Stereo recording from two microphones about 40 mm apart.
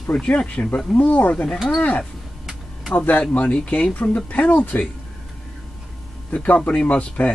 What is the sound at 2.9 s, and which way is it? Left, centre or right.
Speech, left.